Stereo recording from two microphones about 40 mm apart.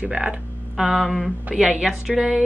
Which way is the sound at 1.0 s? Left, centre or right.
Centre.